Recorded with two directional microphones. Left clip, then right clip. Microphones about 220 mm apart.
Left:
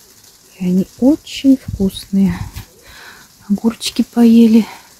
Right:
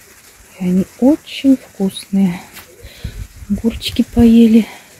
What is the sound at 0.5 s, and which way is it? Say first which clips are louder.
Speech: even; 10° left (ahead or behind).